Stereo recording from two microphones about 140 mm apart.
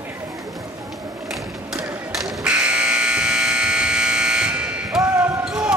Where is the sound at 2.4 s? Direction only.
10° right (ahead or behind).